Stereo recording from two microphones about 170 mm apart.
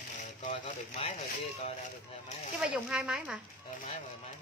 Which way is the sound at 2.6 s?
5° right (ahead or behind).